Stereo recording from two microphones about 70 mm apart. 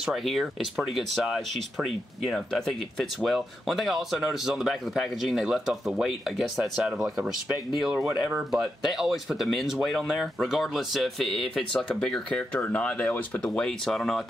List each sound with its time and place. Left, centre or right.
0.0 s speech: centre
8.4 s speech: centre; by 13.7 s left
13.7 s speech: centre